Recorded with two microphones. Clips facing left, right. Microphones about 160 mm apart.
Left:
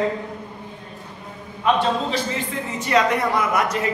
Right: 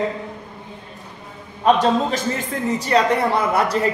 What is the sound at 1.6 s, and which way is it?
Speech, 35° right (ahead or behind).